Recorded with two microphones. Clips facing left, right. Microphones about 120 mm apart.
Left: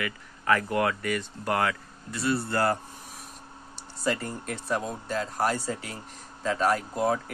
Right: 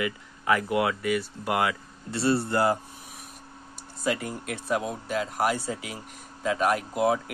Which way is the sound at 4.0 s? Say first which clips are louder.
Right 1 dB; 10° right (ahead or behind).